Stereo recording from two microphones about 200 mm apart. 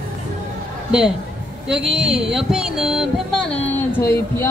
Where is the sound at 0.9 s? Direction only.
5° right (ahead or behind).